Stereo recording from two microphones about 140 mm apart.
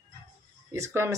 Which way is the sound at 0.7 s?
20° right (ahead or behind).